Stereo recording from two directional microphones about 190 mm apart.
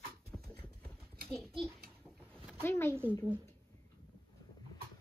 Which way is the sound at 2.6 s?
10° left (ahead or behind).